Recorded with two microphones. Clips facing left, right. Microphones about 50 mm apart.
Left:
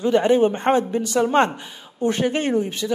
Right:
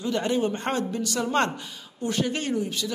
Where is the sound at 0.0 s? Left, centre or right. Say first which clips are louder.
Left 9 dB; left.